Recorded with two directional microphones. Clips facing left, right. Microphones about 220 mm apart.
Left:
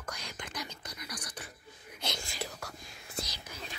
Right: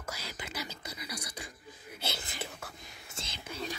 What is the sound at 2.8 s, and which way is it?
Whispering, 25° right (ahead or behind).